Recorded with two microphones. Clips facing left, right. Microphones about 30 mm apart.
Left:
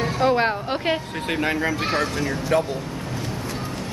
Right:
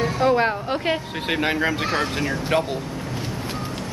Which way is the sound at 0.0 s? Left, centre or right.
Centre.